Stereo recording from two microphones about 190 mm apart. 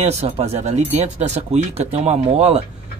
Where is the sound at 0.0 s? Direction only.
35° right (ahead or behind).